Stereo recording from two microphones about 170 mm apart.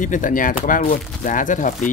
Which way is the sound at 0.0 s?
50° left (ahead or behind).